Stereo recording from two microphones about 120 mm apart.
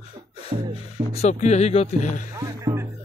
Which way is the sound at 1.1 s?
70° left (ahead or behind).